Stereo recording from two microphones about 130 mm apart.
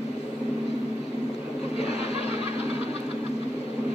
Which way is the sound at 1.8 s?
55° left (ahead or behind).